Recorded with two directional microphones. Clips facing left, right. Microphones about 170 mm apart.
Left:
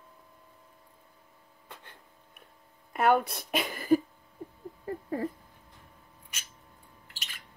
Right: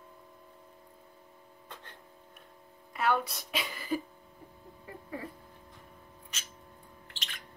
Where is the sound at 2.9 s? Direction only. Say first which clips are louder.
Left 5 dB; 55° left (ahead or behind).